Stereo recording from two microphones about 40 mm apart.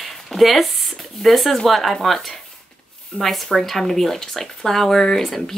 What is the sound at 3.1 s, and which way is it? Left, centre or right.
Speech, left.